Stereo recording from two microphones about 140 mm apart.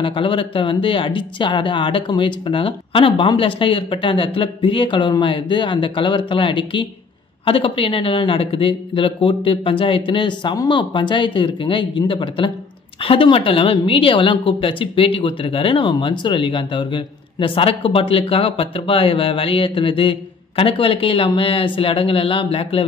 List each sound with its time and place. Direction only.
0.0 s a woman's voice: 40° left (ahead or behind)